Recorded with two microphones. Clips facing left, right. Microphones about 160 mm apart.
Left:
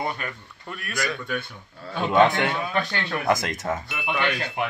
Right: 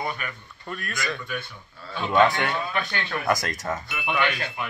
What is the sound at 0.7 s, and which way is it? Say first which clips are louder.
Speech: right 2 dB; 5° left (ahead or behind).